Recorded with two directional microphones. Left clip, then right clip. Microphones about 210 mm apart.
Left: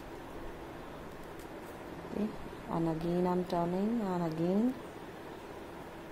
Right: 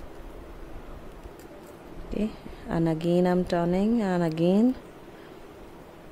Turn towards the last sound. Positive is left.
turn(degrees=-30)  # may be behind; listen again after turning